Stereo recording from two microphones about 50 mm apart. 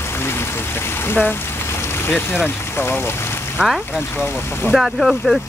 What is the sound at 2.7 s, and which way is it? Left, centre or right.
Speech, left.